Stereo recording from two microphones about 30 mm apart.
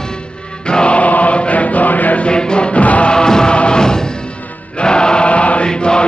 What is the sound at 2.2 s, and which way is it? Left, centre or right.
Music, left.